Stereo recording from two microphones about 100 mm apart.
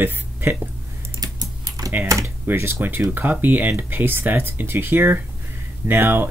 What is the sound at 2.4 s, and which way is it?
Speech, 20° right (ahead or behind).